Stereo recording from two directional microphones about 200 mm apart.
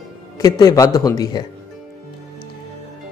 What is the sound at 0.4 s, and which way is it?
Speech, 20° left (ahead or behind).